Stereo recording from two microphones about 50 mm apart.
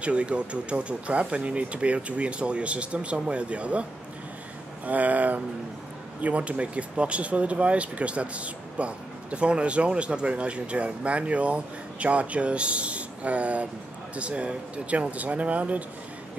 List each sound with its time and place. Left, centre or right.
0.0 s speech: right
4.8 s speech: right